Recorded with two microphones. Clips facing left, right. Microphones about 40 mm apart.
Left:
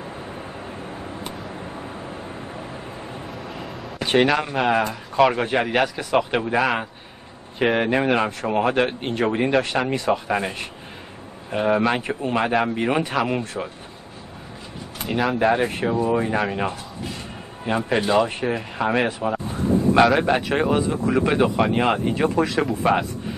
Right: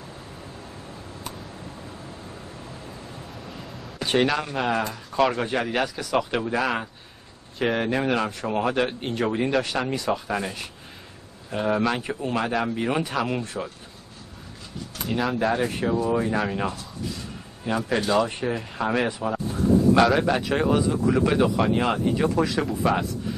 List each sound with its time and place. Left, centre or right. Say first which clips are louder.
0.4 s vehicle: left 7 dB; left
3.3 s a sound: left 6 dB; centre
4.1 s a man's voice: left 4 dB; centre
5.3 s speech: left 4 dB; left
15.0 s speech: left 3 dB; centre
15.3 s speech: left 4 dB; left
19.4 s a sound: right 2 dB; left
20.2 s speech: left 2 dB; left